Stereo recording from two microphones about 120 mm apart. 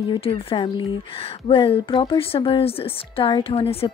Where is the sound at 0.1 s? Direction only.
50° left (ahead or behind).